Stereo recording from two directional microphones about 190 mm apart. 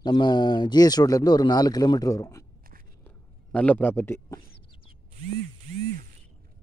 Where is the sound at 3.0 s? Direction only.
5° left (ahead or behind).